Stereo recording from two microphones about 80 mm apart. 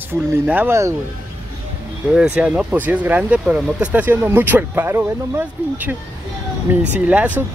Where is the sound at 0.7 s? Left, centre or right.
Right.